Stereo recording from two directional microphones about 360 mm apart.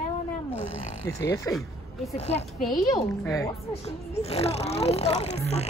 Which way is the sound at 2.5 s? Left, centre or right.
Centre.